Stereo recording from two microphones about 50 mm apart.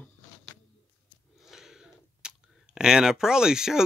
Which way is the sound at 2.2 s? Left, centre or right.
Centre.